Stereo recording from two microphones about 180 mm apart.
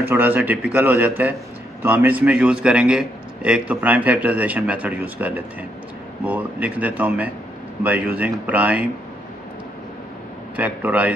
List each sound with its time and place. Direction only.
0.0 s a man's voice: 10° right (ahead or behind)
10.5 s a man's voice: 10° right (ahead or behind)